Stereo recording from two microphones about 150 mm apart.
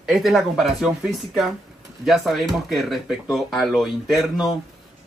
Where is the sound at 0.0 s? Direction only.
Centre (ahead or behind).